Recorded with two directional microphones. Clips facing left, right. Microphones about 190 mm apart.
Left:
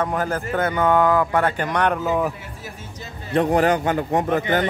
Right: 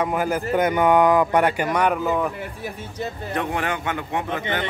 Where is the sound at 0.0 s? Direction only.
10° right (ahead or behind).